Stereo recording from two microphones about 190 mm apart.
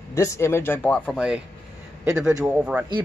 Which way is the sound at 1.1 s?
5° right (ahead or behind).